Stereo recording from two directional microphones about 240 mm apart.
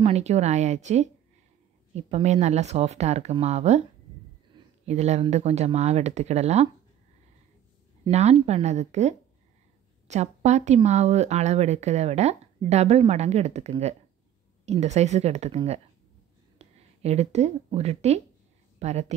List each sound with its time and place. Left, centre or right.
0.0 s speech: right
8.0 s speech: right